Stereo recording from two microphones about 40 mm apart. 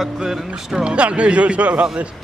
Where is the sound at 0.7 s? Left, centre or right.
Right.